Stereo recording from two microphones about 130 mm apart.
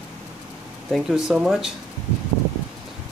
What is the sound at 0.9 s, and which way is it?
Speech, 5° right (ahead or behind).